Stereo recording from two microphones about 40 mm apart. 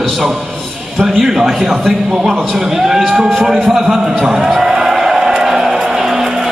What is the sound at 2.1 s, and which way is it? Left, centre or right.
Speech, centre.